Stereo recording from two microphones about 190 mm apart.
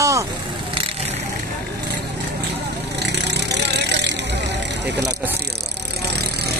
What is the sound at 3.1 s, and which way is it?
Vehicle, 65° right (ahead or behind).